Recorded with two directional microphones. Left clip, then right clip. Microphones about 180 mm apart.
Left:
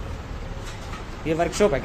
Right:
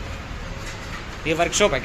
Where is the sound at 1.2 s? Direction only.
15° left (ahead or behind).